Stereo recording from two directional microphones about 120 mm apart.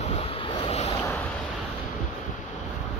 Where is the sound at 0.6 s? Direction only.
60° left (ahead or behind).